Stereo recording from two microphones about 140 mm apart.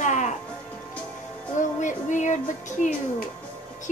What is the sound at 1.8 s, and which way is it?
Music, 60° left (ahead or behind).